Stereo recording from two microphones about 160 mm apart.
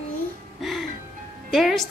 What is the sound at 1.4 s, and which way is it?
Speech, centre (ahead or behind).